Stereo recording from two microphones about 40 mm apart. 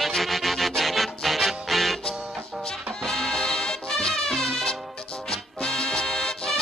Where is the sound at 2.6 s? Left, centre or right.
Centre.